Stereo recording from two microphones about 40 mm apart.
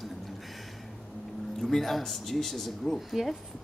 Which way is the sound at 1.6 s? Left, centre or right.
Centre.